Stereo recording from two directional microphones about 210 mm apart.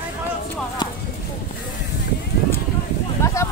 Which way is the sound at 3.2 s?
15° left (ahead or behind).